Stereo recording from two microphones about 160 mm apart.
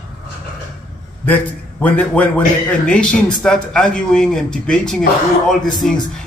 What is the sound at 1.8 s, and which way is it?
A man's voice, 10° left (ahead or behind).